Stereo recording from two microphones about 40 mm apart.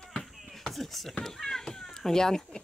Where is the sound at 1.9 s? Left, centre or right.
Centre.